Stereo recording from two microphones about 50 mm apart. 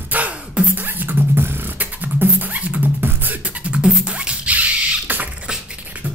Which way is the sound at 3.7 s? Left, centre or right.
Right.